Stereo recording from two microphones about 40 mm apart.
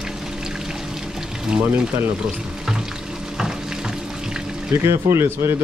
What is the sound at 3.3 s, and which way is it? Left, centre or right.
Frying, centre.